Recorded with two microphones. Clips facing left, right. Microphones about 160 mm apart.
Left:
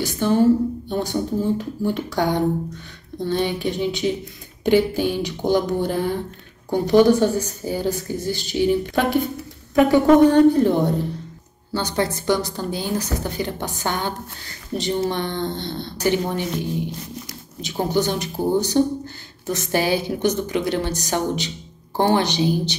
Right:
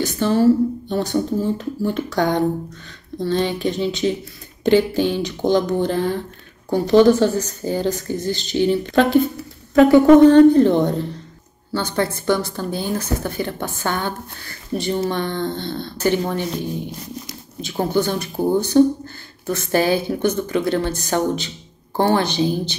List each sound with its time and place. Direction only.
0.0 s speech: 15° left (ahead or behind)
17.6 s speech: 15° left (ahead or behind)